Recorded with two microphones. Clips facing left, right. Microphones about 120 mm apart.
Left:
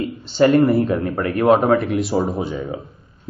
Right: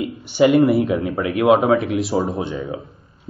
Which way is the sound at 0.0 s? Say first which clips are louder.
Even; 15° right (ahead or behind).